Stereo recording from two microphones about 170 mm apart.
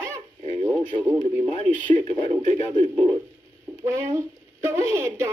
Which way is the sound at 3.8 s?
20° right (ahead or behind).